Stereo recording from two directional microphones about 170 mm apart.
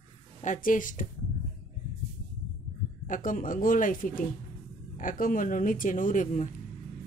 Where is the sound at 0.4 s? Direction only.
50° left (ahead or behind).